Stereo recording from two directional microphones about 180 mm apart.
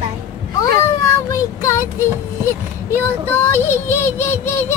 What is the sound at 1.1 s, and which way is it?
Child singing, 15° left (ahead or behind).